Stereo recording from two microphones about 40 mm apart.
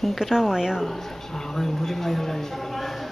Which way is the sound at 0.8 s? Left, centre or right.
Centre.